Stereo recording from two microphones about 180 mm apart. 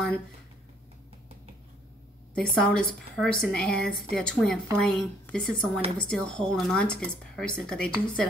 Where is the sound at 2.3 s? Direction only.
5° left (ahead or behind).